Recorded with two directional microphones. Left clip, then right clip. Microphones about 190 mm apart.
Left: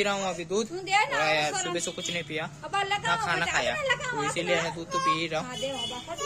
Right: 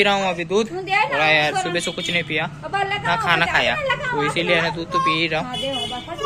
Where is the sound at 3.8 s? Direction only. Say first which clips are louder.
Right 6 dB; 80° left.